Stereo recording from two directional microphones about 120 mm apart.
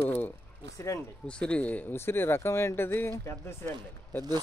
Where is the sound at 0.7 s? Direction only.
25° left (ahead or behind).